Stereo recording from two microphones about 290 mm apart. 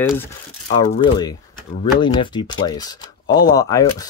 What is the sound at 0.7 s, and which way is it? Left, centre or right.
Speech, centre.